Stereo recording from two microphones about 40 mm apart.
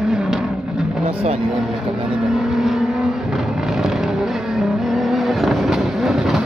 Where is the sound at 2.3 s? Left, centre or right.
Centre.